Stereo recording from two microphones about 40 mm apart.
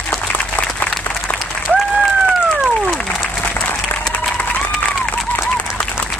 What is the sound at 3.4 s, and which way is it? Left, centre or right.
Applause, left.